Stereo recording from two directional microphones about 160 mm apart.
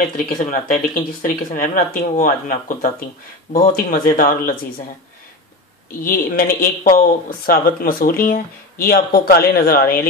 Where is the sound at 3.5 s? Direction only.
70° left (ahead or behind).